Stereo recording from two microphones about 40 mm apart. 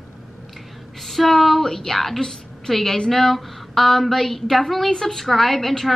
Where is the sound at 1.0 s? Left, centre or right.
Centre.